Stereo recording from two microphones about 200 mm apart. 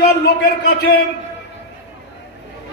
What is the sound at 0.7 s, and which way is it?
Speech, 55° left (ahead or behind).